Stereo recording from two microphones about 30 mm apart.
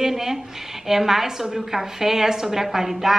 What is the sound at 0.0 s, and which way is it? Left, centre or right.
A woman's voice, centre.